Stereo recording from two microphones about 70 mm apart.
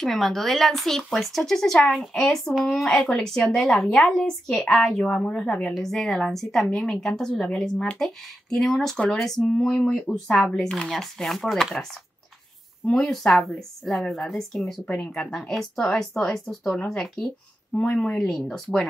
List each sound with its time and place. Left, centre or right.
0.0 s a woman's voice: centre